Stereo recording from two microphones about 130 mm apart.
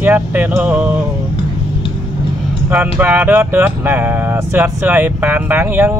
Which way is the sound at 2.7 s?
15° right (ahead or behind).